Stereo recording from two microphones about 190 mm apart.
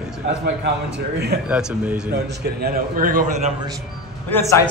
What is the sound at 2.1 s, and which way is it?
A man's voice, 60° right (ahead or behind).